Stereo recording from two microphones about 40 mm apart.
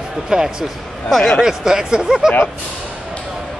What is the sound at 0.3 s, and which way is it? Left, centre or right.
Speech, centre.